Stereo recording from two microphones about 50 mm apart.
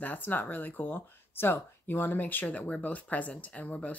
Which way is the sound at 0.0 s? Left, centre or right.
Left.